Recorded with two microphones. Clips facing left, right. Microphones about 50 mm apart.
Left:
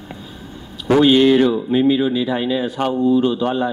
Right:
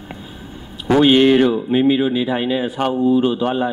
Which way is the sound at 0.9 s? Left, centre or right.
Right.